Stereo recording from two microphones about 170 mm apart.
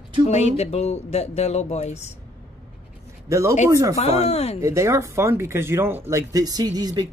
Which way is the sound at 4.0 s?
40° left (ahead or behind).